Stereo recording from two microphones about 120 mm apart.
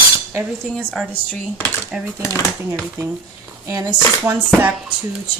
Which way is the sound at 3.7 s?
30° right (ahead or behind).